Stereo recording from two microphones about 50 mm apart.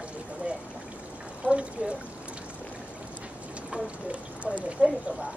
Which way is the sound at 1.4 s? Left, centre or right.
Right.